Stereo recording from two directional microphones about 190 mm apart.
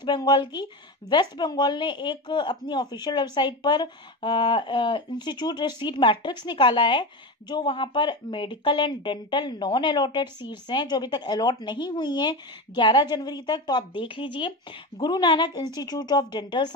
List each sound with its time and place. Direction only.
0.0 s a woman's voice: 25° left (ahead or behind)